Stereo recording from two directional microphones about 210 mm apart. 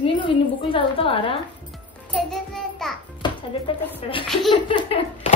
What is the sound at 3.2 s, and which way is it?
Music, 20° left (ahead or behind).